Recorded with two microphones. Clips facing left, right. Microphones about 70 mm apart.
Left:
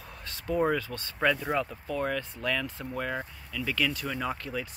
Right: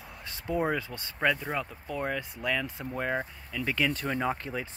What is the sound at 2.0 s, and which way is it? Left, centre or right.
Speech, centre.